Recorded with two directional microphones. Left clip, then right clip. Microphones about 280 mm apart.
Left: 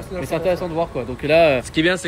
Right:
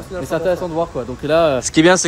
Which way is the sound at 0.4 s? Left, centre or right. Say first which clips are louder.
Right 2 dB; centre.